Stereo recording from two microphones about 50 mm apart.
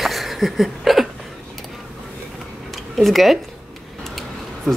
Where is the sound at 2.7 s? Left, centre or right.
Centre.